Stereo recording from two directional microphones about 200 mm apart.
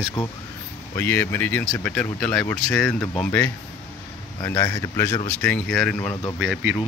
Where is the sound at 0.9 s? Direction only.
10° left (ahead or behind).